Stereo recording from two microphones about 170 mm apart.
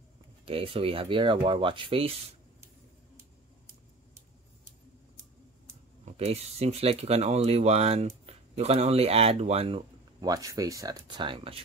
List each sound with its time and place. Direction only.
0.5 s speech: 35° right (ahead or behind)
6.0 s speech: 40° right (ahead or behind)
10.2 s speech: 20° right (ahead or behind)